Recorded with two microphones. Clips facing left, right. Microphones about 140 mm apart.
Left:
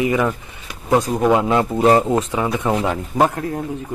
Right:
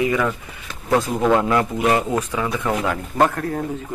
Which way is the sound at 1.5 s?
30° left (ahead or behind).